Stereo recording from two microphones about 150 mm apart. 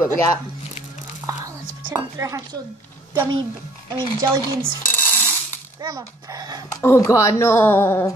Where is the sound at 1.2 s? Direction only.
20° right (ahead or behind).